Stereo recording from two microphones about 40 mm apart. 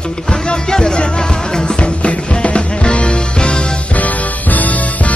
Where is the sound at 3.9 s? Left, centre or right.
Left.